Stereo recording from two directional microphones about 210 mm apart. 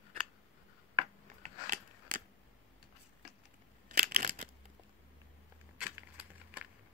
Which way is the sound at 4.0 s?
40° right (ahead or behind).